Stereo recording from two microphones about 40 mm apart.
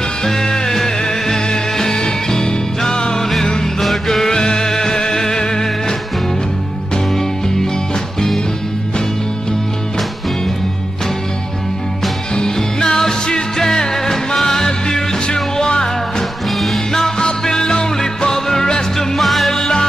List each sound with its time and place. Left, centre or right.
0.2 s music: centre
3.8 s music: centre
7.1 s music: centre
12.4 s music: centre
16.4 s music: centre
16.9 s music: centre
19.1 s music: centre
19.5 s music: centre